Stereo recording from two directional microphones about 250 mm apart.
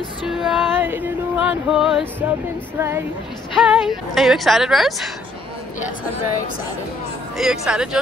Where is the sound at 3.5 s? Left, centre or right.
Centre.